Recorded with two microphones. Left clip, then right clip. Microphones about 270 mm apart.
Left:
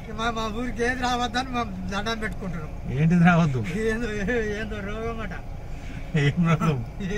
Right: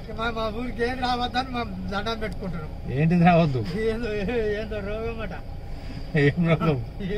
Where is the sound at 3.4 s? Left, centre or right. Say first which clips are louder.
Right 3 dB; centre.